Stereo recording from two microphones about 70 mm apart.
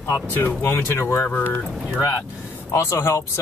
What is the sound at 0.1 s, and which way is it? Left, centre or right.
Speech, left.